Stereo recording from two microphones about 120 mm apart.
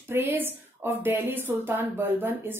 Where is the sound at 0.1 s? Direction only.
15° right (ahead or behind).